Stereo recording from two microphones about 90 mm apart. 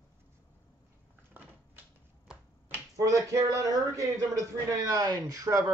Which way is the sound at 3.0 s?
35° right (ahead or behind).